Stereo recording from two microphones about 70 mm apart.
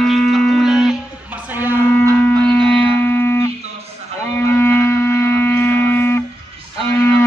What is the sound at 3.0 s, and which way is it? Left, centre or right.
Music, left.